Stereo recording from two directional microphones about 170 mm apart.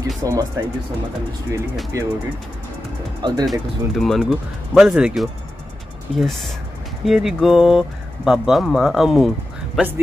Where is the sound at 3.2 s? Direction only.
25° right (ahead or behind).